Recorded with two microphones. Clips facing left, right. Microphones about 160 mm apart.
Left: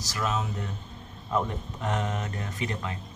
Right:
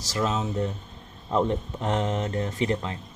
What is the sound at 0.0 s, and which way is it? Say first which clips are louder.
Speech: right 3 dB; 30° right (ahead or behind).